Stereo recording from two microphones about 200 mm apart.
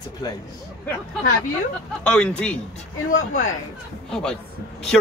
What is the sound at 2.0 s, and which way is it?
Speech, 5° left (ahead or behind).